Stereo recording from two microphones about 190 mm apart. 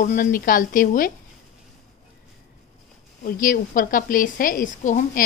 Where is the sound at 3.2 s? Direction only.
45° left (ahead or behind).